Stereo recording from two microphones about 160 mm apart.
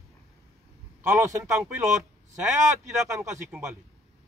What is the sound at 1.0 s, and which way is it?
Speech, 20° right (ahead or behind).